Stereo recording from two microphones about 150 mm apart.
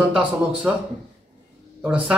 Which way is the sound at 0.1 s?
5° right (ahead or behind).